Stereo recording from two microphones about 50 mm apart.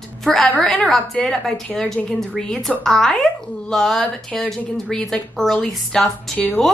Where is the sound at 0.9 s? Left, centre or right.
Centre.